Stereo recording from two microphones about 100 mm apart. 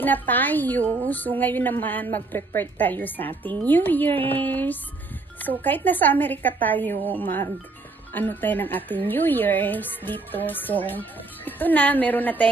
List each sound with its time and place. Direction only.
0.0 s a woman's voice: 20° left (ahead or behind)